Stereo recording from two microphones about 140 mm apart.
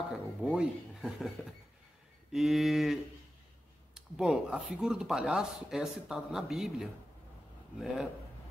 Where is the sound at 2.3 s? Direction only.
Centre (ahead or behind).